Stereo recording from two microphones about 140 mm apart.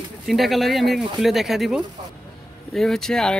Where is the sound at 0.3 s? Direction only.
Centre (ahead or behind).